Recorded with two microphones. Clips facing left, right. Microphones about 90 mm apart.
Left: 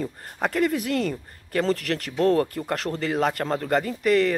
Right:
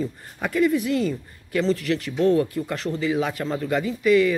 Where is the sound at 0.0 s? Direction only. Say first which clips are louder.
Left 1 dB; 55° left (ahead or behind).